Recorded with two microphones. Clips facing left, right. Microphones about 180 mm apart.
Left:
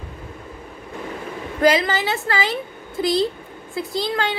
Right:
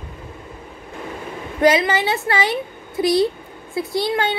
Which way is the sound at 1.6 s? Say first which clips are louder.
Right 2 dB; 20° right (ahead or behind).